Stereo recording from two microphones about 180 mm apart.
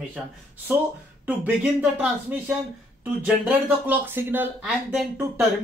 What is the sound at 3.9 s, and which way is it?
Speech, 10° right (ahead or behind).